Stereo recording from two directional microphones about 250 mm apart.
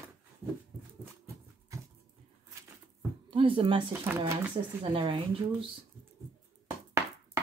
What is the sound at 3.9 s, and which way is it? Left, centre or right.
Speech, centre.